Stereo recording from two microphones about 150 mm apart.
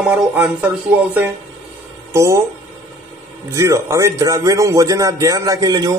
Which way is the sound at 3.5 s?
20° right (ahead or behind).